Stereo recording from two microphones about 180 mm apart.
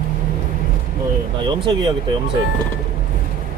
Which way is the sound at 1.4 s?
25° right (ahead or behind).